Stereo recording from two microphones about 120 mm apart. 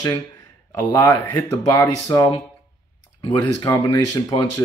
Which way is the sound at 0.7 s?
15° left (ahead or behind).